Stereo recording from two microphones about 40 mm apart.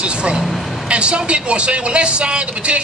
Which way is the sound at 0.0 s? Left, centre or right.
Right.